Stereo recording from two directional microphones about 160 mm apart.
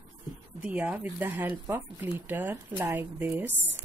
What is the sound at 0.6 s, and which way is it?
Speech, 10° right (ahead or behind).